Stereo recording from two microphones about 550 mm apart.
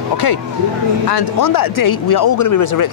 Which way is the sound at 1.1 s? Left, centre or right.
Left.